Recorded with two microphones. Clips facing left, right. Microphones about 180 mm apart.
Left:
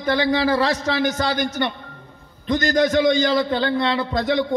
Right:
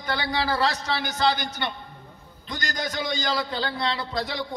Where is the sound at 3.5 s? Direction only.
55° left (ahead or behind).